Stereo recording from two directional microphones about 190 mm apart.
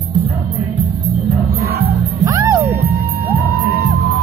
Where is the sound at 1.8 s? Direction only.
20° right (ahead or behind).